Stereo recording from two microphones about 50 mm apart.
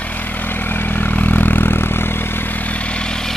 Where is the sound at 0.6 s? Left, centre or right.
Left.